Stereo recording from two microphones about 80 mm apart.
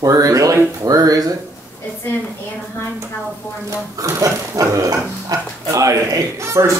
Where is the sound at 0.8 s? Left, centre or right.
Right.